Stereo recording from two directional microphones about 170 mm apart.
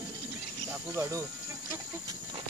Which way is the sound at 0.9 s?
15° right (ahead or behind).